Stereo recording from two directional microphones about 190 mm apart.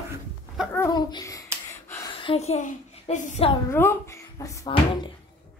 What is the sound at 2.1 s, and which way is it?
A woman's voice, 25° left (ahead or behind).